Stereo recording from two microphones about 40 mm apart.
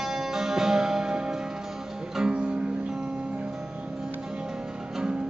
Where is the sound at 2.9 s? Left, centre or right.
Centre.